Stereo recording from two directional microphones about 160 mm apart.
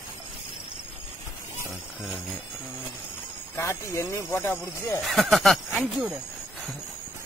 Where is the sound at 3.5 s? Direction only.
15° left (ahead or behind).